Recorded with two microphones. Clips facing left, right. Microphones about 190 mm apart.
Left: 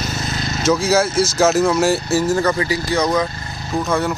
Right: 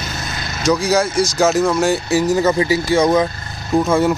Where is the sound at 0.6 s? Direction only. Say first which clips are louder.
Even; 5° left (ahead or behind).